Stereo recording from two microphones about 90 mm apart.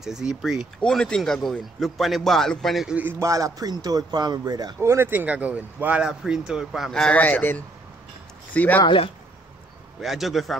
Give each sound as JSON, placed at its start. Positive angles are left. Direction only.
{"t": 0.0, "sound": "a man's voice", "side_deg": -5}
{"t": 0.7, "sound": "a man's voice", "side_deg": 10}
{"t": 2.9, "sound": "speech", "side_deg": -20}
{"t": 3.2, "sound": "speech", "side_deg": -35}
{"t": 4.7, "sound": "speech", "side_deg": -30}
{"t": 5.2, "sound": "speech", "side_deg": -15}
{"t": 6.0, "sound": "a man's voice", "side_deg": -5}
{"t": 7.2, "sound": "speech", "side_deg": 15}
{"t": 8.8, "sound": "speech", "side_deg": 75}
{"t": 9.9, "sound": "a man's voice", "side_deg": 0}